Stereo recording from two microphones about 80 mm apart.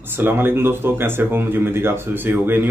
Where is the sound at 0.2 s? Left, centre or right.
Right.